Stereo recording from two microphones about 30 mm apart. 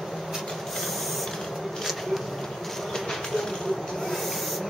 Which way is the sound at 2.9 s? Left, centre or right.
Centre.